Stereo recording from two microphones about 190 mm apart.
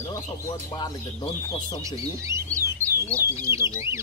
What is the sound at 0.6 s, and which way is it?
Speech, 20° left (ahead or behind).